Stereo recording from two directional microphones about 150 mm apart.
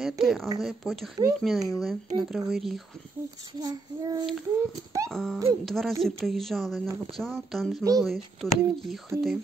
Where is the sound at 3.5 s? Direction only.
25° right (ahead or behind).